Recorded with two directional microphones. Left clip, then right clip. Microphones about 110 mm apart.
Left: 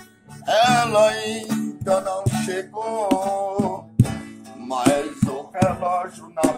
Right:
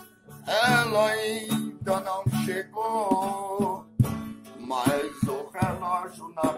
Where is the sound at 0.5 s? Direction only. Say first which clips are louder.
Left 6 dB; 30° left (ahead or behind).